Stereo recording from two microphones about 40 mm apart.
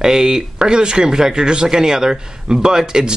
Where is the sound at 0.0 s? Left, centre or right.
Centre.